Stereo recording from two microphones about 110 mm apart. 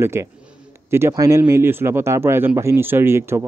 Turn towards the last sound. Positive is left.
turn(degrees=-25)  # may be behind; listen again after turning